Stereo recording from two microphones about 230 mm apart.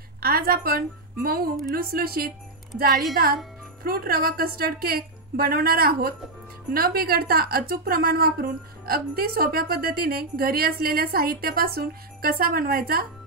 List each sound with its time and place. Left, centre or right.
0.2 s a woman's voice: right
2.9 s a woman's voice: centre
3.8 s a woman's voice: right